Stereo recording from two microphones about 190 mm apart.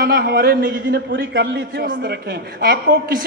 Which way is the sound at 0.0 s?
55° right (ahead or behind).